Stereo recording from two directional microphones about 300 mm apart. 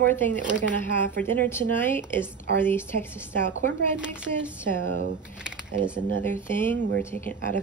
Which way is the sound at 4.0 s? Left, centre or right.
Centre.